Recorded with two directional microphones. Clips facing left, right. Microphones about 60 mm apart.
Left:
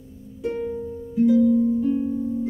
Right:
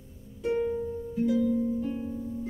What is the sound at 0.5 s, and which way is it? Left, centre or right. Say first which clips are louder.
Music: even; centre.